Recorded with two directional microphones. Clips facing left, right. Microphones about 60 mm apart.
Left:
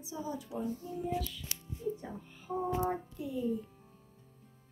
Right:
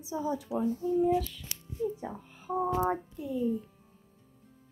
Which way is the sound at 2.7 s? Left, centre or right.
Right.